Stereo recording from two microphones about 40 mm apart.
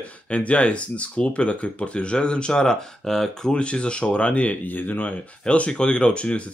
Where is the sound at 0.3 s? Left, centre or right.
Left; by 3.5 s centre.